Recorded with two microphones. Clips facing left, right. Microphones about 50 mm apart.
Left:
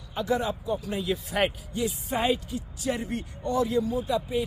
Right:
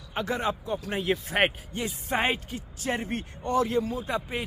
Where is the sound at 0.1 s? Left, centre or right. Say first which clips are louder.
Left 1 dB; right.